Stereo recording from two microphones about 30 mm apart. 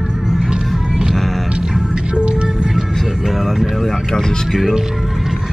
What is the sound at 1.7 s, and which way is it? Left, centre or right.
Music, right.